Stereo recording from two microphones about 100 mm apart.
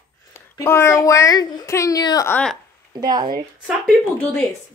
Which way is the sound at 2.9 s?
45° right (ahead or behind).